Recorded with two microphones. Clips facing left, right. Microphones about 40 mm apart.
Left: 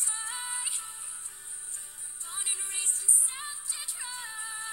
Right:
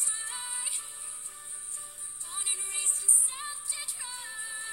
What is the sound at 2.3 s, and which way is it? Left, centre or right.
Music, centre.